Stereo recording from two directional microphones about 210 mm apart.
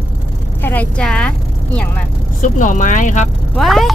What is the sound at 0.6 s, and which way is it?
Speech, 10° left (ahead or behind).